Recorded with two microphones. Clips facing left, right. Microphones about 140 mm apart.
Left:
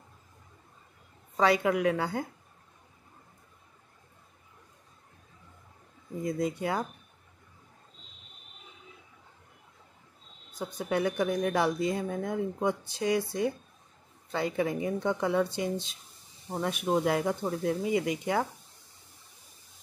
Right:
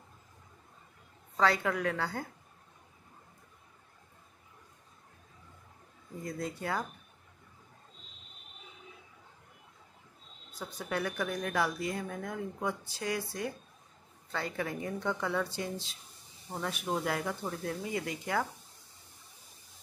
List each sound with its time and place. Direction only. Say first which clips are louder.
1.3 s a woman's voice: left 4 dB; 15° left (ahead or behind)
6.2 s a woman's voice: left 7 dB; 20° left (ahead or behind)
10.6 s speech: left 6 dB; 15° left (ahead or behind)